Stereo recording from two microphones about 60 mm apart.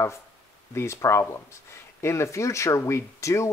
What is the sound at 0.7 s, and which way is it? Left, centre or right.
Speech, left.